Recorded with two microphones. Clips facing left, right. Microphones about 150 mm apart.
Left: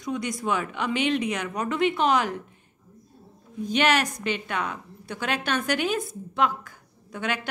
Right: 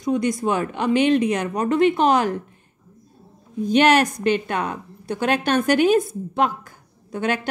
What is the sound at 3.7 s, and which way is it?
A woman's voice, 45° right (ahead or behind).